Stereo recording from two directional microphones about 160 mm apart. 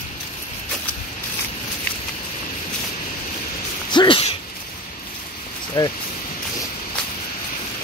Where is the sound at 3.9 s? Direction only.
30° left (ahead or behind).